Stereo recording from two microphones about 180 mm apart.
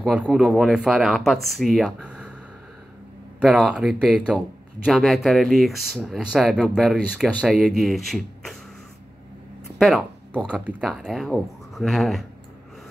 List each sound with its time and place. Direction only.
0.0 s speech: 5° right (ahead or behind)
3.3 s speech: 5° right (ahead or behind)
9.8 s speech: 5° right (ahead or behind)